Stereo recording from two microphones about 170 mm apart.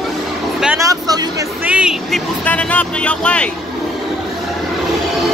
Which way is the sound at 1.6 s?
5° right (ahead or behind).